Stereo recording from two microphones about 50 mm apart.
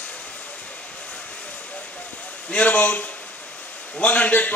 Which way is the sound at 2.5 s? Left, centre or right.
Left.